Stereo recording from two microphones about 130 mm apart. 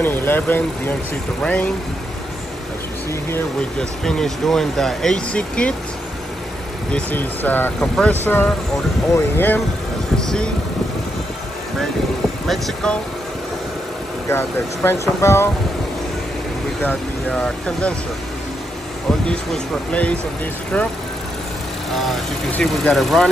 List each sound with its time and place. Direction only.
0.0 s speech: 15° left (ahead or behind)
3.1 s speech: 20° left (ahead or behind)
4.0 s speech: 5° left (ahead or behind)
6.9 s speech: 15° left (ahead or behind)
12.4 s speech: centre (ahead or behind)
14.3 s speech: 20° left (ahead or behind)
16.8 s speech: 5° left (ahead or behind)
19.0 s speech: 10° left (ahead or behind)
21.9 s speech: centre (ahead or behind)